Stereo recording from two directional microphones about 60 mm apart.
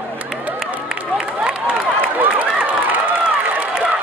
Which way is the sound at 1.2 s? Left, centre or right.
Centre.